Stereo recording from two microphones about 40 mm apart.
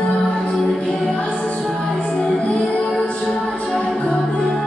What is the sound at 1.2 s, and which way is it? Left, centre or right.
Music, left.